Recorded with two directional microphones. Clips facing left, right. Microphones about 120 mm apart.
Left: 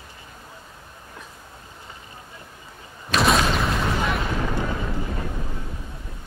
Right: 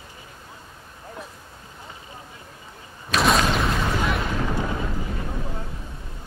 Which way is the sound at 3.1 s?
Centre (ahead or behind).